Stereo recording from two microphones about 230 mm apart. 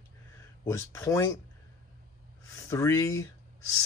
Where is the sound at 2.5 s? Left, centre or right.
Centre.